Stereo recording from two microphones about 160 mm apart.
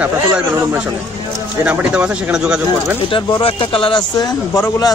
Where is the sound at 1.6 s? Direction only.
10° right (ahead or behind).